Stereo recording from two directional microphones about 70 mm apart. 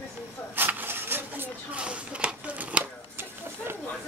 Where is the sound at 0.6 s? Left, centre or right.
Right.